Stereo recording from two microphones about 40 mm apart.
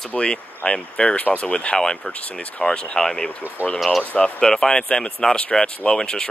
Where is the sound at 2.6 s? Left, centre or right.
Centre.